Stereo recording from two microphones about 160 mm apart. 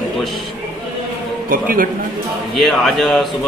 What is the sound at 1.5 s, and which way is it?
Speech, 60° right (ahead or behind).